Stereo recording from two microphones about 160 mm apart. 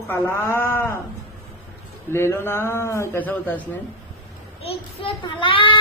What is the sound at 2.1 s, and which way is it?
Speech, 15° left (ahead or behind).